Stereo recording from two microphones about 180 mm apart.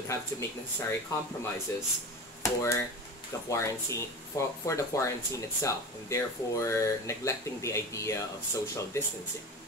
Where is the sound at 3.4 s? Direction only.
15° left (ahead or behind).